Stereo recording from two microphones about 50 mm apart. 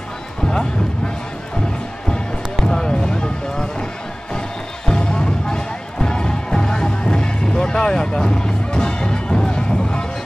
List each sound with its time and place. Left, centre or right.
0.5 s music: centre
2.6 s music: centre